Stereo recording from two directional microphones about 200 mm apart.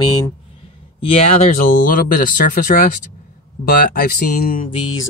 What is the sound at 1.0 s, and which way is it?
Speech, 30° left (ahead or behind).